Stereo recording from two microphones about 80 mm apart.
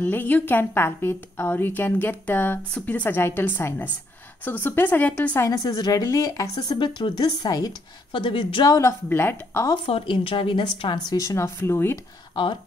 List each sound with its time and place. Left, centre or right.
0.0 s a woman's voice: left
5.5 s speech: left
6.8 s speech: left
7.2 s speech: left
8.1 s speech: left
8.6 s speech: left
9.1 s speech: left
10.0 s speech: left
11.1 s speech: left